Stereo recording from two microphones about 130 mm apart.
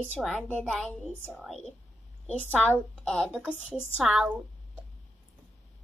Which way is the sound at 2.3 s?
10° left (ahead or behind).